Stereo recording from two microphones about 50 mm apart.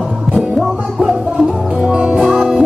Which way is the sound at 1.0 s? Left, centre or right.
Centre.